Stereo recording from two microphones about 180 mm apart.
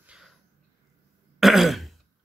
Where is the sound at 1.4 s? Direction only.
Centre (ahead or behind).